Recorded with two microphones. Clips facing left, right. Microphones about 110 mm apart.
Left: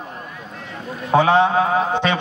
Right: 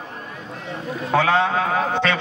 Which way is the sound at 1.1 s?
20° left (ahead or behind).